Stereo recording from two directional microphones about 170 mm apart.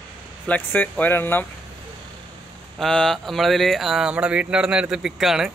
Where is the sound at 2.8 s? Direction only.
5° left (ahead or behind).